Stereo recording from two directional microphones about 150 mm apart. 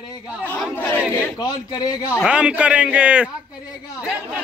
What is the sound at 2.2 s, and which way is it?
A man's voice, 5° right (ahead or behind).